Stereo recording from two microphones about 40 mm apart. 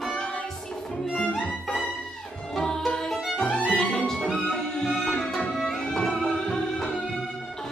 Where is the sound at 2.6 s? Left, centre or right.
Centre.